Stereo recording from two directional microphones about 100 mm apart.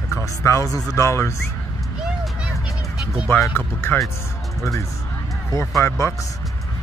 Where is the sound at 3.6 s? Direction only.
25° left (ahead or behind).